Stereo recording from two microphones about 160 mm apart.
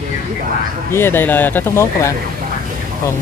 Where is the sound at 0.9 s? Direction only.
15° left (ahead or behind).